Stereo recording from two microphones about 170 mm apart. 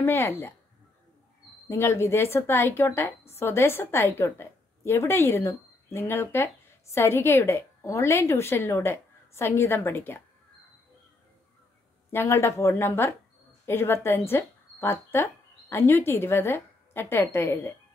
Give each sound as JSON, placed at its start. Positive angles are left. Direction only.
{"t": 0.0, "sound": "a woman's voice", "side_deg": 15}
{"t": 1.7, "sound": "a woman's voice", "side_deg": 15}
{"t": 12.1, "sound": "a woman's voice", "side_deg": 15}